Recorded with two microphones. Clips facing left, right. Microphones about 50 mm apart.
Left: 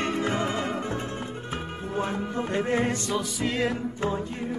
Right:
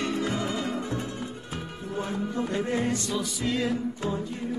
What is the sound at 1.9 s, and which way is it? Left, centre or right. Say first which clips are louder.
Music: left 1 dB; left.